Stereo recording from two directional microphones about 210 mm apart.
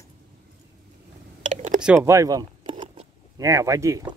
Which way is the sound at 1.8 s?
10° right (ahead or behind).